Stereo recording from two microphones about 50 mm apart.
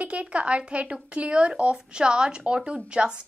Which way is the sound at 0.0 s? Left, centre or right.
Right.